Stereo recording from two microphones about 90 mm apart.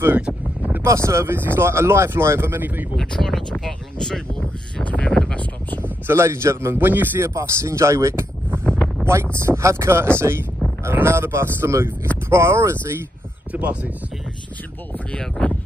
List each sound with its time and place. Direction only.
0.2 s a sound: 10° right (ahead or behind)
0.8 s speech: 35° right (ahead or behind)
3.0 s speech: 5° left (ahead or behind)
6.0 s speech: 30° right (ahead or behind)
8.5 s wind noise: 10° left (ahead or behind)
9.0 s speech: 30° right (ahead or behind)
13.5 s speech: 15° right (ahead or behind)
15.1 s speech: 10° left (ahead or behind)